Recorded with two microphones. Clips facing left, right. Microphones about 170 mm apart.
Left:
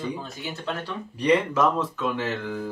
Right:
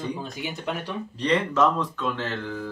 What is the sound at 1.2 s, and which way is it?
Speech, 10° left (ahead or behind).